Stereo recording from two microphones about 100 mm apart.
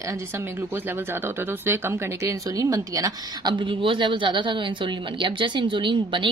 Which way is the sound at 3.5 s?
55° right (ahead or behind).